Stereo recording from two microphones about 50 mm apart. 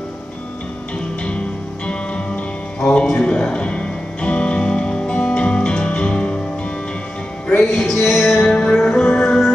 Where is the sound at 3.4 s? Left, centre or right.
Left.